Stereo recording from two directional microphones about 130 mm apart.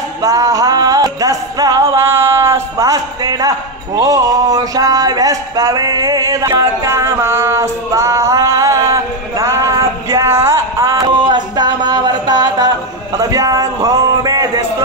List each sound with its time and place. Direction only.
0.2 s music: 25° right (ahead or behind)
6.5 s a sound: 20° right (ahead or behind)
13.2 s a man's voice: 25° right (ahead or behind)